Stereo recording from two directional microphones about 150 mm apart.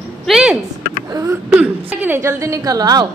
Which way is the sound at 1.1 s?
15° right (ahead or behind).